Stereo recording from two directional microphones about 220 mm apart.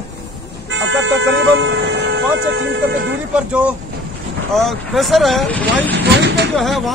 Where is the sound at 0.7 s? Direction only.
60° right (ahead or behind).